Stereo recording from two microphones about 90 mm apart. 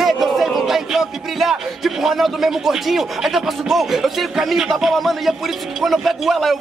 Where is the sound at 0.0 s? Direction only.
Centre (ahead or behind).